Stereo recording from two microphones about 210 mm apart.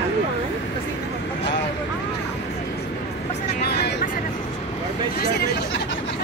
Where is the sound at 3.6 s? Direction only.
50° left (ahead or behind).